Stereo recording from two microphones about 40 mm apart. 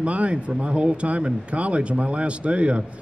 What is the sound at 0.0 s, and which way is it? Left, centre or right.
A man's voice, right.